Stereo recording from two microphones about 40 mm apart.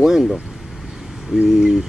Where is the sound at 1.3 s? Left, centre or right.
Right.